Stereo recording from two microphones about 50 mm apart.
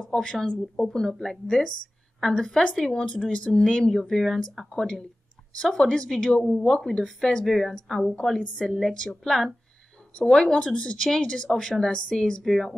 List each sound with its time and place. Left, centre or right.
0.1 s speech: centre
7.4 s a woman's voice: centre
8.2 s speech: centre
12.4 s a woman's voice: centre